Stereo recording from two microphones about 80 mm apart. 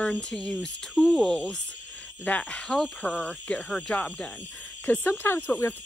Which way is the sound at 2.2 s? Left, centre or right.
Centre.